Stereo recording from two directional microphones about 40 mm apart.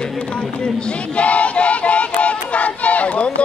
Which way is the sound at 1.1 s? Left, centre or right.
Left.